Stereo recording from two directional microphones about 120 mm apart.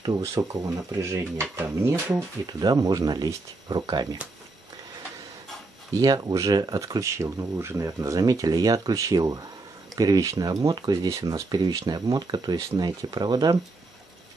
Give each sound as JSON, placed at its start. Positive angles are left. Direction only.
{"t": 0.2, "sound": "speech", "side_deg": -25}
{"t": 2.6, "sound": "speech", "side_deg": -30}
{"t": 5.9, "sound": "speech", "side_deg": -35}